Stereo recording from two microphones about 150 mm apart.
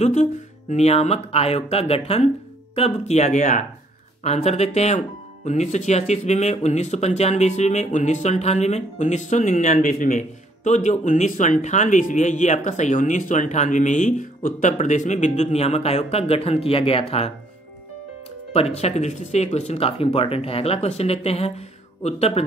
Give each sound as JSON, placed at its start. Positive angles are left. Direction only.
{"t": 0.0, "sound": "speech", "side_deg": 50}
{"t": 18.5, "sound": "speech", "side_deg": 45}